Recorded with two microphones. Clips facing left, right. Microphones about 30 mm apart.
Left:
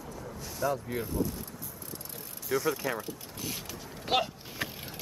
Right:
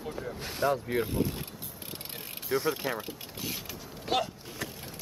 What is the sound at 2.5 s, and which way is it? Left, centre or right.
Speech, right.